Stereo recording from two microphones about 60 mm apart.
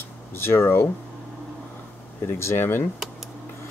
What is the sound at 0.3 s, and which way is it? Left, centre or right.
Speech, left.